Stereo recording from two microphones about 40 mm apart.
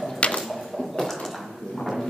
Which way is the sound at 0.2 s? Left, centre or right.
Left.